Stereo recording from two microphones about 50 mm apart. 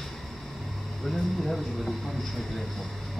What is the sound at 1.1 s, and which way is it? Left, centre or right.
Speech, centre.